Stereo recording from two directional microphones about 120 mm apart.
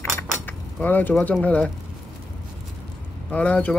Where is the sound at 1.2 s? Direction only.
10° left (ahead or behind).